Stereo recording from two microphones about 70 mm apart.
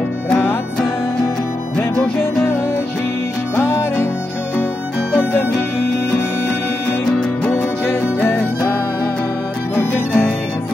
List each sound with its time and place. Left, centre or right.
7.4 s music: left
9.8 s music: centre